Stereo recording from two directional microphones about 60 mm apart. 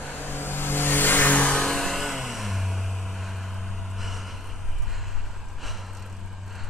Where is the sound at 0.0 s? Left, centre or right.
Left.